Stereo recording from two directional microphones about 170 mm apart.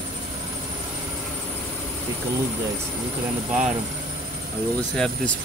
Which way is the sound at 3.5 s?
5° right (ahead or behind).